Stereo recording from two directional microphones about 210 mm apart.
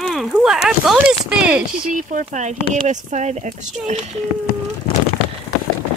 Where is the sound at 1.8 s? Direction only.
40° right (ahead or behind).